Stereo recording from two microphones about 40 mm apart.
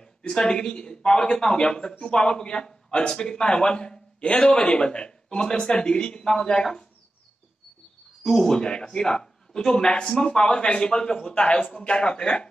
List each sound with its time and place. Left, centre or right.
0.3 s speech: left
8.2 s speech: centre